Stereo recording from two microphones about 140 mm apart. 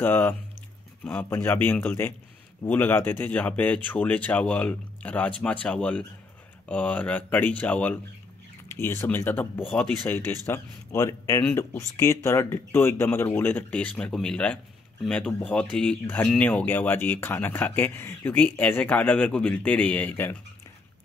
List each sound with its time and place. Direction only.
0.0 s speech: 15° left (ahead or behind)